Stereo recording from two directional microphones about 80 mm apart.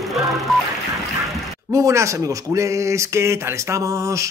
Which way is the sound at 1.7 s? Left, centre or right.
Right.